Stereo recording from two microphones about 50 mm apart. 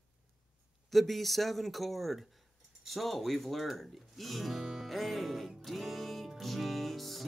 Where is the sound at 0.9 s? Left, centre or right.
Centre.